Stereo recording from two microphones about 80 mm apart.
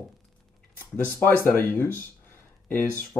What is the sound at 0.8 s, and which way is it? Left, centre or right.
A man's voice, left.